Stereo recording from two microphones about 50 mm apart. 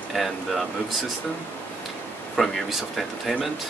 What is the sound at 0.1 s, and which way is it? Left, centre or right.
Speech, centre.